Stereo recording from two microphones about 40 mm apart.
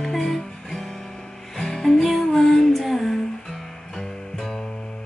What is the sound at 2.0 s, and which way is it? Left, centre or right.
Music, centre.